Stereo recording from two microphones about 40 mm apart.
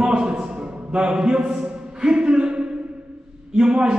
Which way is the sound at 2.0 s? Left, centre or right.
Right.